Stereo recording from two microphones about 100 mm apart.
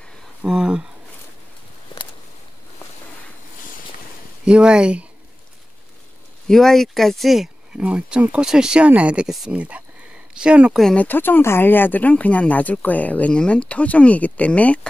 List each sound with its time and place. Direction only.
0.4 s speech: 10° right (ahead or behind)
1.9 s a sound: 50° left (ahead or behind)
4.5 s speech: 10° right (ahead or behind)
6.4 s speech: 5° left (ahead or behind)
11.0 s speech: 20° left (ahead or behind)